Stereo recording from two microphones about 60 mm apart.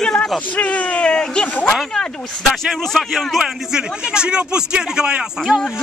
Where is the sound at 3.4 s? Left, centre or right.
Centre.